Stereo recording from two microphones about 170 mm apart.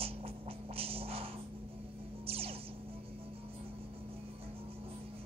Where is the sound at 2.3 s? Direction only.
35° right (ahead or behind).